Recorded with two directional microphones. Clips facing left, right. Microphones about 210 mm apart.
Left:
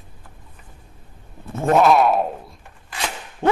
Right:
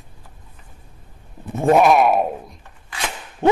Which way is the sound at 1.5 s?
15° right (ahead or behind).